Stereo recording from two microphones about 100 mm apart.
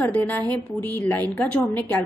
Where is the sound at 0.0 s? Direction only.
20° left (ahead or behind).